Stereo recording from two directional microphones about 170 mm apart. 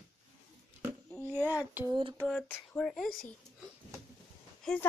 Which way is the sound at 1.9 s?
30° right (ahead or behind).